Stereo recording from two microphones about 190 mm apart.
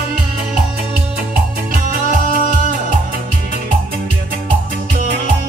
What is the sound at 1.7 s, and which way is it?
Music, 45° right (ahead or behind).